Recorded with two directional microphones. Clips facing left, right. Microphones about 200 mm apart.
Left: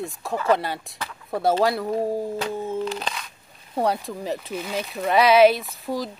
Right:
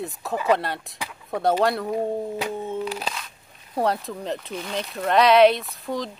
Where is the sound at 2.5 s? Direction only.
Centre (ahead or behind).